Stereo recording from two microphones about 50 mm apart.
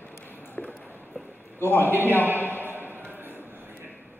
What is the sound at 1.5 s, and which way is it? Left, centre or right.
Speech, left.